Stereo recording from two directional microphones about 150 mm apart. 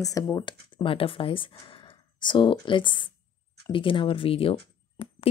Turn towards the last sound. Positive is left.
turn(degrees=35)  # may be behind; listen again after turning